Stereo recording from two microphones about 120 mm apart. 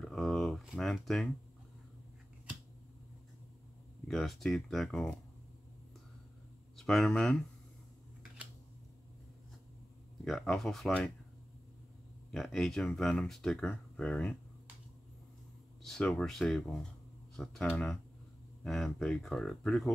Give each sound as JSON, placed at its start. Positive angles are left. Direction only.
{"t": 0.0, "sound": "a sound", "side_deg": 0}
{"t": 4.1, "sound": "speech", "side_deg": 5}
{"t": 6.8, "sound": "speech", "side_deg": 5}
{"t": 10.2, "sound": "speech", "side_deg": 0}
{"t": 12.3, "sound": "speech", "side_deg": 5}
{"t": 15.8, "sound": "speech", "side_deg": 5}
{"t": 18.6, "sound": "speech", "side_deg": 5}